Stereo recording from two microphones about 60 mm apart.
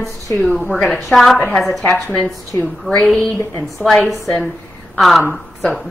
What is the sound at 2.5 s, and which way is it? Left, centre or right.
Speech, left.